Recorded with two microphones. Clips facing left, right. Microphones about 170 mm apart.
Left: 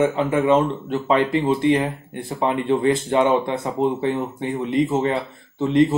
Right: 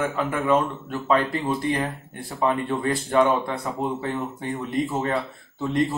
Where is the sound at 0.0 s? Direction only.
25° left (ahead or behind).